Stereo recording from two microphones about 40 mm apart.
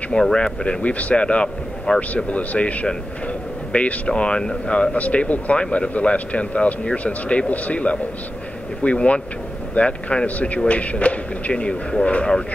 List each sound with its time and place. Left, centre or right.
0.1 s speech: left
2.2 s speech: left
4.1 s speech: left
4.9 s speech: left